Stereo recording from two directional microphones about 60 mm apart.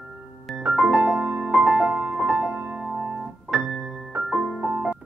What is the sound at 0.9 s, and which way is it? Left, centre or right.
Music, right.